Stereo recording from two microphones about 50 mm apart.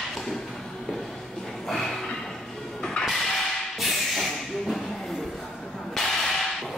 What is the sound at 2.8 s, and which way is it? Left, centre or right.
Music, centre.